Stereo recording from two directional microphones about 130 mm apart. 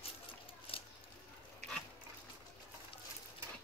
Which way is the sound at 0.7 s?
45° left (ahead or behind).